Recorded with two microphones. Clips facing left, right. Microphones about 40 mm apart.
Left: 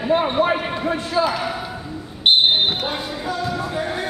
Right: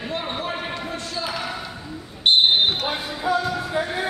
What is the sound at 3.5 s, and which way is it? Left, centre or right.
Music, centre.